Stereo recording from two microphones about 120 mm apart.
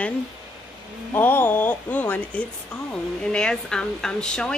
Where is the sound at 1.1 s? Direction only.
15° left (ahead or behind).